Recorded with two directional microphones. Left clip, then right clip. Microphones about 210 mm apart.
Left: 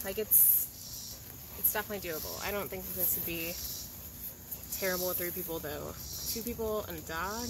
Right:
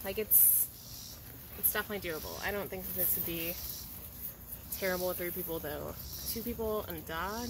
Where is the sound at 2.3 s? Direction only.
Centre (ahead or behind).